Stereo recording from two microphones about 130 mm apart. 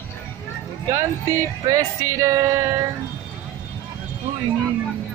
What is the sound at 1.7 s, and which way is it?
Male singing, 25° right (ahead or behind).